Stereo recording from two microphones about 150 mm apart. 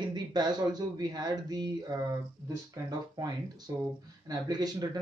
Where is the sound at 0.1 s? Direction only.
30° right (ahead or behind).